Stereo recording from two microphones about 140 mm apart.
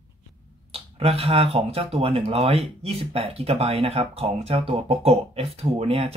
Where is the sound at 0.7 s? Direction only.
45° right (ahead or behind).